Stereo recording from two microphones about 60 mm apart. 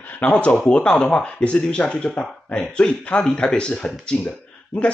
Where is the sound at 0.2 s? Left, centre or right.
Left.